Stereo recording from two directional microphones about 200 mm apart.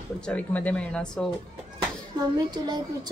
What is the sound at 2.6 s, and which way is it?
Speech, 20° right (ahead or behind).